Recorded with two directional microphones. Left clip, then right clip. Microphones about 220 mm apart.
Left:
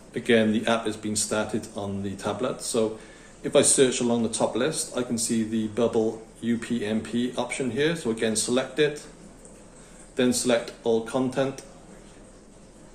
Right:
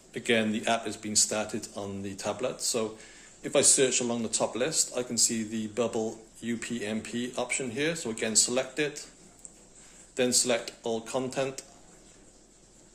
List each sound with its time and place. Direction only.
0.1 s speech: 30° right (ahead or behind)
10.1 s speech: 30° right (ahead or behind)